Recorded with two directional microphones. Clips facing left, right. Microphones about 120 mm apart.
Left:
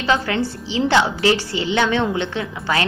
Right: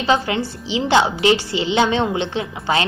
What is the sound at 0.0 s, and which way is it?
A woman's voice, 20° right (ahead or behind).